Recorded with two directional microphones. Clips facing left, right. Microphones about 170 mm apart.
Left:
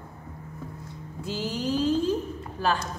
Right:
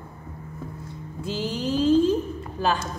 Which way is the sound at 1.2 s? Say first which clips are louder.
Right 2 dB; 25° right (ahead or behind).